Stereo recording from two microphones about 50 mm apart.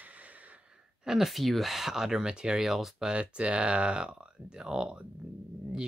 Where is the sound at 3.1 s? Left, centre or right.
Right.